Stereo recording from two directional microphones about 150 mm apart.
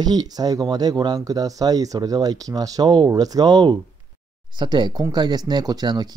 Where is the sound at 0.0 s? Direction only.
25° right (ahead or behind).